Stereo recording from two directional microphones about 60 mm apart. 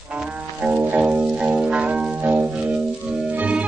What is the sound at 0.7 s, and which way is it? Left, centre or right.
Music, right.